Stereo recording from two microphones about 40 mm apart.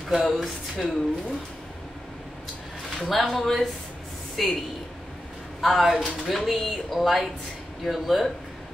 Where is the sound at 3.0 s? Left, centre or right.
Centre.